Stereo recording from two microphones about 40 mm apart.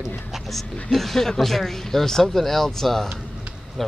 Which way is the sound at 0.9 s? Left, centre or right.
Centre.